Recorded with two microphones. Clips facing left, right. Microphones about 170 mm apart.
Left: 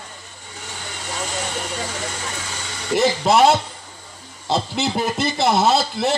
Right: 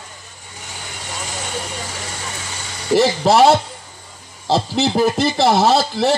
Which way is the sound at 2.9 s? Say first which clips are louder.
Right 3 dB; 35° right (ahead or behind).